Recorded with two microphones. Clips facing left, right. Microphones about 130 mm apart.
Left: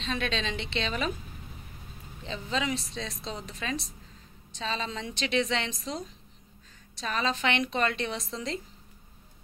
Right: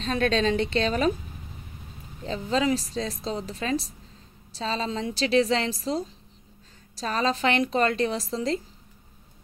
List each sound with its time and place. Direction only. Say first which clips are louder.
0.0 s a woman's voice: right 8 dB; 45° right (ahead or behind)
2.2 s a woman's voice: right 7 dB; 40° right (ahead or behind)